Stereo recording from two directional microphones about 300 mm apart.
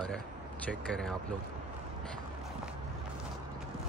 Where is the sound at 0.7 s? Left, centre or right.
Centre.